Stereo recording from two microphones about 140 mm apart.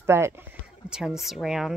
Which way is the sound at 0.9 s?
5° right (ahead or behind).